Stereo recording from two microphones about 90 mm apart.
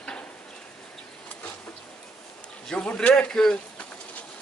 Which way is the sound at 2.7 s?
10° left (ahead or behind).